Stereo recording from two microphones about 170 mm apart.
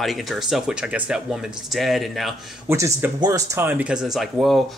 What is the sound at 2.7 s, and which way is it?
Speech, 15° right (ahead or behind).